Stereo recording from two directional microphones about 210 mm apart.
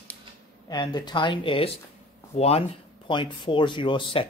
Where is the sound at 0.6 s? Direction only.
20° left (ahead or behind).